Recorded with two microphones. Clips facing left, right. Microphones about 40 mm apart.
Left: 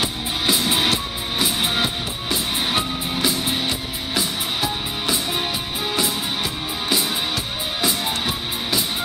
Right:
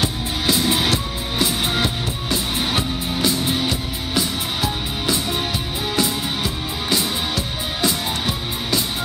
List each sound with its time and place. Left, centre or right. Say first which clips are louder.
0.0 s music: right 1 dB; centre
7.8 s music: right 1 dB; centre